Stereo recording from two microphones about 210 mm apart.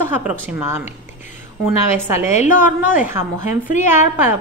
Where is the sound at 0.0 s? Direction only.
10° right (ahead or behind).